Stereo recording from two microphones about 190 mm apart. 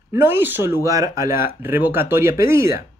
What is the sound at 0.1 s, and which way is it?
Speech, 10° right (ahead or behind).